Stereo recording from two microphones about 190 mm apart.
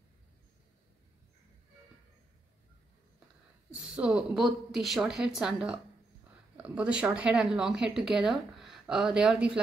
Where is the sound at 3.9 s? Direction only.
5° right (ahead or behind).